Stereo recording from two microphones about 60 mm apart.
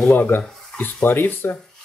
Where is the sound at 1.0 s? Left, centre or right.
Left.